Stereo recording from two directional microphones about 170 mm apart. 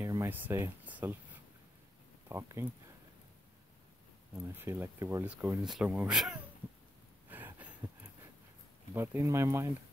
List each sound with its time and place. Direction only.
0.0 s speech: 15° right (ahead or behind)
4.6 s speech: 15° right (ahead or behind)
5.2 s speech: 5° right (ahead or behind)
7.2 s a sound: 10° right (ahead or behind)
8.9 s speech: 15° right (ahead or behind)